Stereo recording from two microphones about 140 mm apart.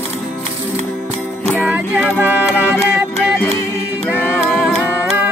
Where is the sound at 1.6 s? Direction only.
5° right (ahead or behind).